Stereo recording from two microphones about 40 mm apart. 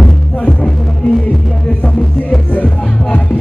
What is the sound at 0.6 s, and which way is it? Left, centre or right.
Music, left.